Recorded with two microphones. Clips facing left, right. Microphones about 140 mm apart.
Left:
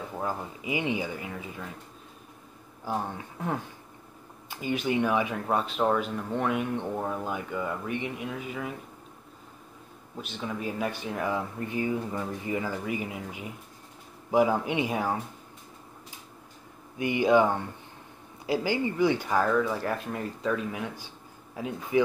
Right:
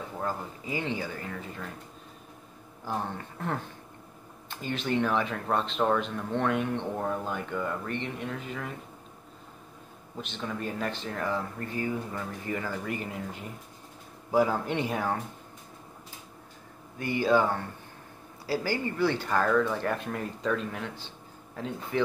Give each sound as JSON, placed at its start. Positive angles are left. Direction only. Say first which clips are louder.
{"t": 0.2, "sound": "speech", "louder": "left 1 dB", "side_deg": 10}
{"t": 2.8, "sound": "speech", "louder": "left 1 dB", "side_deg": 10}
{"t": 10.2, "sound": "speech", "louder": "left 1 dB", "side_deg": 5}
{"t": 17.0, "sound": "speech", "louder": "left 3 dB", "side_deg": 15}